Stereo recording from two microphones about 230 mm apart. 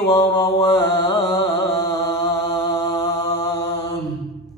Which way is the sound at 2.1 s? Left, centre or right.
Centre.